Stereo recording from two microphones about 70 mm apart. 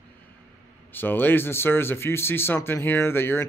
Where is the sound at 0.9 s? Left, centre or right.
Left.